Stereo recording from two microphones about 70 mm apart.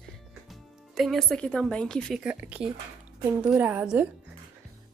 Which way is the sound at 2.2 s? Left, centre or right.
Centre.